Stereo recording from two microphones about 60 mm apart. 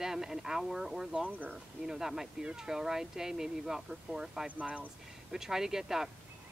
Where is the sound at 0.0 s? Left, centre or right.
Centre.